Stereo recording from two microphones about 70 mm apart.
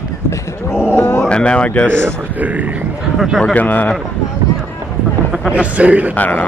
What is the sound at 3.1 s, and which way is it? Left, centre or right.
Speech, centre.